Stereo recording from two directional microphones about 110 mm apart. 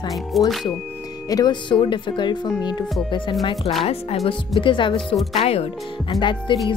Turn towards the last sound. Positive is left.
turn(degrees=45)  # may be behind; listen again after turning